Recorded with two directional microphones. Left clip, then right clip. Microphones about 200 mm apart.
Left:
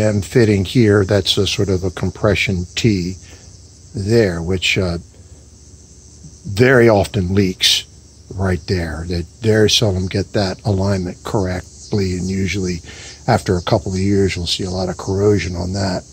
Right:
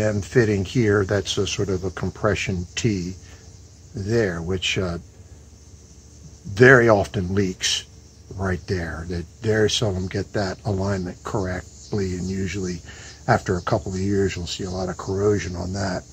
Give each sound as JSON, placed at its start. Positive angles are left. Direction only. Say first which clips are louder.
{"t": 0.0, "sound": "speech", "louder": "left 5 dB", "side_deg": 35}
{"t": 6.5, "sound": "speech", "louder": "left 2 dB", "side_deg": 30}